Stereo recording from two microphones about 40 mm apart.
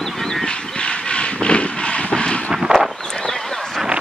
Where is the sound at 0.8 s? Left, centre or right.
Left.